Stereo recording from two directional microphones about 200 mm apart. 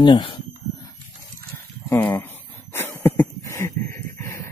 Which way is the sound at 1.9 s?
15° left (ahead or behind).